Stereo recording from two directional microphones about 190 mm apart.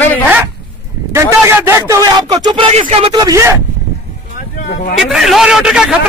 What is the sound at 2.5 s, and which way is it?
Speech, 30° right (ahead or behind).